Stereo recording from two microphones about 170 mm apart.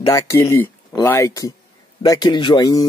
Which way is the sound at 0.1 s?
15° left (ahead or behind).